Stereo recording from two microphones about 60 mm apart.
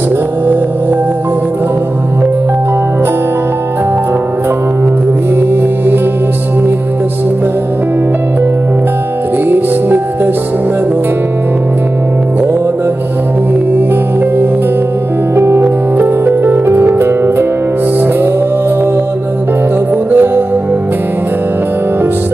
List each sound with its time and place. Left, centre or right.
9.5 s music: right
15.3 s music: right
20.1 s music: right